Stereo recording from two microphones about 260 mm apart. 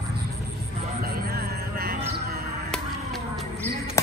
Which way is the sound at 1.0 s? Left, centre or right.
Right.